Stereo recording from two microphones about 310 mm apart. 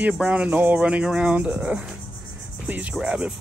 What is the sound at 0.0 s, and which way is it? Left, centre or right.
Speech, centre.